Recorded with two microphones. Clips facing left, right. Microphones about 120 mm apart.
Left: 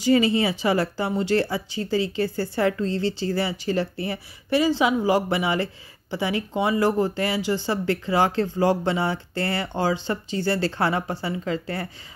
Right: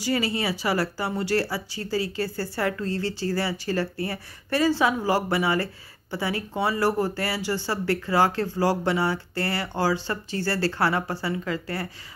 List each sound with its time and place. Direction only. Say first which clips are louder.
0.0 s speech: left 6 dB; 20° left (ahead or behind)